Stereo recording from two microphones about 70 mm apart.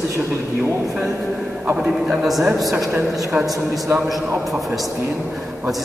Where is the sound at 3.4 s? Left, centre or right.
Right.